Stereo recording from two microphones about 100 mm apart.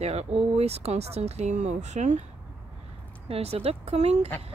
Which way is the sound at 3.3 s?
90° right.